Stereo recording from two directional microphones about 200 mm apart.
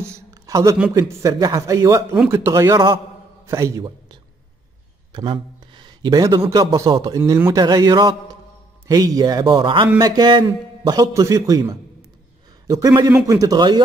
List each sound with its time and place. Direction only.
0.0 s a sound: 15° right (ahead or behind)
0.9 s a man's voice: 15° right (ahead or behind)
12.6 s a man's voice: 15° right (ahead or behind)